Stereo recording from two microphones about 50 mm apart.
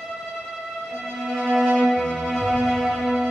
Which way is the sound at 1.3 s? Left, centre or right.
Centre.